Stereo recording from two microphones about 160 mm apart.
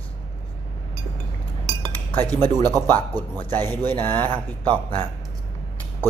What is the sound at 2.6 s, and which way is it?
Speech, 25° right (ahead or behind).